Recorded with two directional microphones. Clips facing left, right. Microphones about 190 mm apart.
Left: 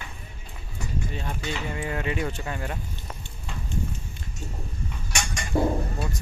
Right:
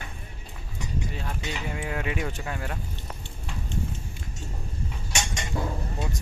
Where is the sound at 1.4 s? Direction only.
10° right (ahead or behind).